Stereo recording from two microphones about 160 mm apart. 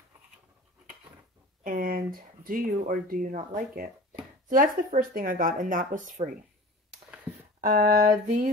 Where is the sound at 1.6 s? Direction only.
65° right (ahead or behind).